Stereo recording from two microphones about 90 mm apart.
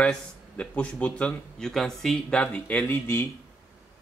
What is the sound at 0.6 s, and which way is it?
Speech, 15° left (ahead or behind).